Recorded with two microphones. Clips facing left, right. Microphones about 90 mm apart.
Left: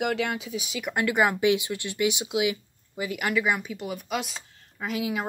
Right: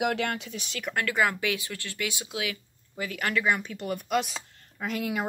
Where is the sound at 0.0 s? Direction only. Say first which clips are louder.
Left 1 dB; centre (ahead or behind).